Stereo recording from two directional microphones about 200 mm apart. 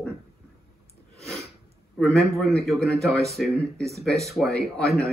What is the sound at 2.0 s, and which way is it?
Speech, centre (ahead or behind).